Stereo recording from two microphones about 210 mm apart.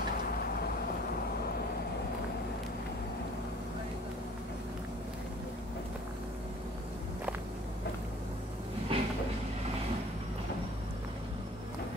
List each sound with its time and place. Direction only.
8.9 s train: 25° right (ahead or behind)